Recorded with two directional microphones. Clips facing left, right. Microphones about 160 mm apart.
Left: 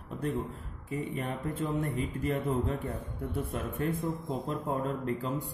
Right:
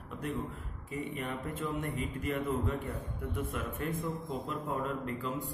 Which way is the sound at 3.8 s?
40° left (ahead or behind).